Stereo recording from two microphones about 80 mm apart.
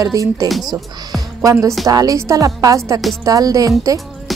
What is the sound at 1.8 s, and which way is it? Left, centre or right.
A woman's voice, right.